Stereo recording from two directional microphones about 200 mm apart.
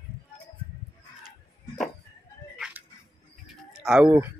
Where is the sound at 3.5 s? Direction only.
Centre (ahead or behind).